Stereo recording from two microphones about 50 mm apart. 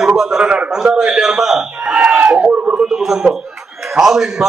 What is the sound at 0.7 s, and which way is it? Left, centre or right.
A man's voice, centre.